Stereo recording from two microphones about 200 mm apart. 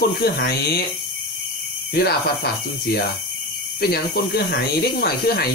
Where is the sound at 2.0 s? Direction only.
50° left (ahead or behind).